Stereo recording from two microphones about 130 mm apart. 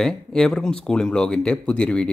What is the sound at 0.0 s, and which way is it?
A man's voice, 5° left (ahead or behind).